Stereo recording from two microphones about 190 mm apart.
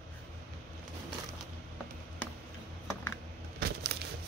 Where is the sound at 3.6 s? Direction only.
55° right (ahead or behind).